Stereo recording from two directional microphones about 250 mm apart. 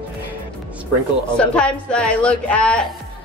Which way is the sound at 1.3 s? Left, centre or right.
Centre.